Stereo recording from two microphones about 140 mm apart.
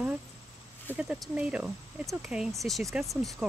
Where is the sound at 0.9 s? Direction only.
10° right (ahead or behind).